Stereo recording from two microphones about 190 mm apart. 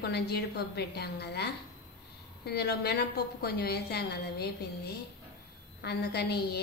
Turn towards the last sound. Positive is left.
turn(degrees=60)  # may be behind; listen again after turning